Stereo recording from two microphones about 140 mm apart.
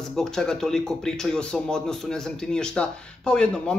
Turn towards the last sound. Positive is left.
turn(degrees=5)  # may be behind; listen again after turning